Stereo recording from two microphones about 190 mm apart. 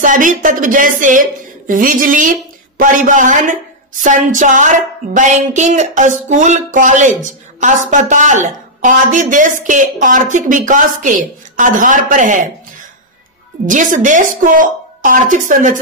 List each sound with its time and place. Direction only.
0.0 s a woman's voice: 45° right (ahead or behind)
13.7 s a woman's voice: 40° right (ahead or behind)